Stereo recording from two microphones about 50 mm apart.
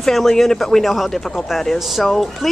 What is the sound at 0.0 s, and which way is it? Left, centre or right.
Speech, centre.